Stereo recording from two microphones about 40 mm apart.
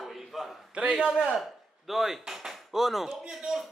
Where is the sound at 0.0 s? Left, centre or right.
Centre.